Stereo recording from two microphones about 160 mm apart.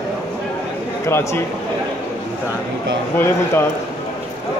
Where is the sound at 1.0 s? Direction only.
15° left (ahead or behind).